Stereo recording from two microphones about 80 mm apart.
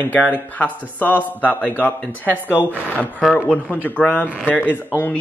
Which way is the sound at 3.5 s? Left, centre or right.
Centre.